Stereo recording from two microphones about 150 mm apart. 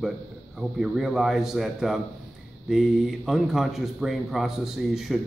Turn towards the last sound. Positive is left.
turn(degrees=0)  # may be behind; listen again after turning